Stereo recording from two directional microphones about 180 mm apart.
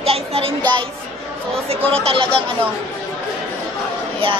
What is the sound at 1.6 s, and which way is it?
Speech, 35° right (ahead or behind).